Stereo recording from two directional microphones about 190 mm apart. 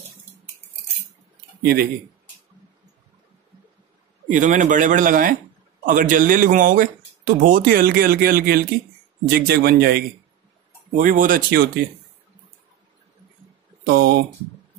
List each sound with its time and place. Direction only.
1.6 s speech: 55° right (ahead or behind)
4.3 s speech: 40° right (ahead or behind)
13.8 s speech: 55° right (ahead or behind)